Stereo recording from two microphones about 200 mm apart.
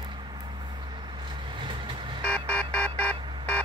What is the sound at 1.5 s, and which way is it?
Vehicle, 25° right (ahead or behind).